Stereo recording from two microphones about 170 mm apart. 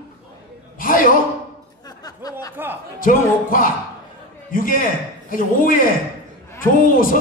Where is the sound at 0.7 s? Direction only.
55° left (ahead or behind).